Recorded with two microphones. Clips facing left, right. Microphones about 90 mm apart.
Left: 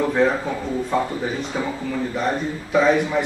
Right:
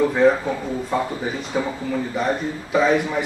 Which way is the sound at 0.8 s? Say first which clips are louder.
Left 1 dB; centre (ahead or behind).